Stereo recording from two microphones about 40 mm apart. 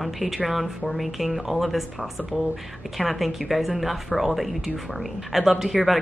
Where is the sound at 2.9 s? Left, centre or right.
Centre.